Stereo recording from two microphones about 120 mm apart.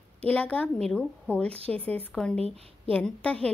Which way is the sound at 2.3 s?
55° right (ahead or behind).